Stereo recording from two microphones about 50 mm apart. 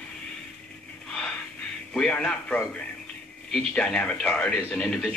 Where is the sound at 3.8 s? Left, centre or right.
Left.